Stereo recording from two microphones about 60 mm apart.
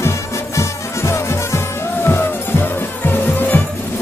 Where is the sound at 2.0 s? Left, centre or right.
Left.